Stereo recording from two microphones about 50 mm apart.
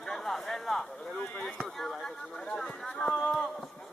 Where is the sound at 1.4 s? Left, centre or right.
Centre.